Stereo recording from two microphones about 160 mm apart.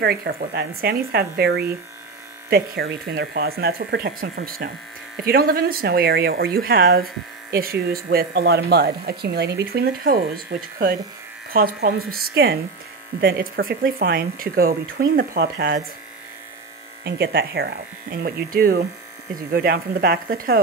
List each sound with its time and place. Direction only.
0.0 s speech: 70° right (ahead or behind)
17.0 s speech: 85° right; by 20.6 s 65° right (ahead or behind)